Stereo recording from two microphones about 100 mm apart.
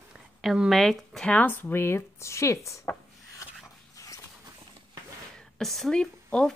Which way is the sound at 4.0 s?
35° left (ahead or behind).